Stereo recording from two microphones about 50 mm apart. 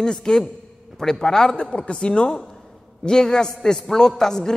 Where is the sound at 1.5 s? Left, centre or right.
Left.